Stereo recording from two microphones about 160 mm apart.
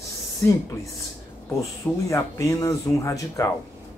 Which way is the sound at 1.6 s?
20° left (ahead or behind).